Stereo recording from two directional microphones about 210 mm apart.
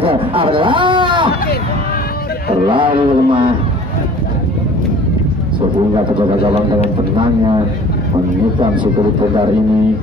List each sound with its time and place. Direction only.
0.0 s speech: 25° right (ahead or behind)
2.6 s speech: 25° right (ahead or behind)
6.1 s a man's voice: 25° right (ahead or behind)